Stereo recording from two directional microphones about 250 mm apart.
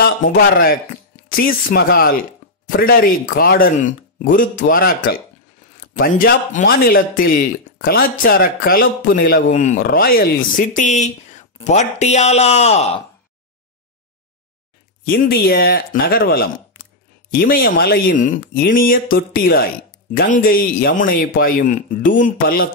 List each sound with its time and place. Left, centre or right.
0.0 s a man's voice: left
15.0 s speech: left